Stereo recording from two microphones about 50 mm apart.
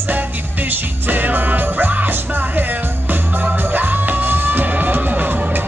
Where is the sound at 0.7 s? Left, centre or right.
Right.